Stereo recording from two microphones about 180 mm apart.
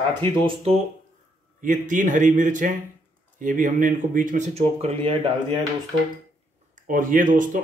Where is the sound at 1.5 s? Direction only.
45° right (ahead or behind).